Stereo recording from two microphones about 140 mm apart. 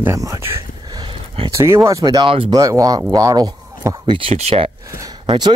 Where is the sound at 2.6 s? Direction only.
25° right (ahead or behind).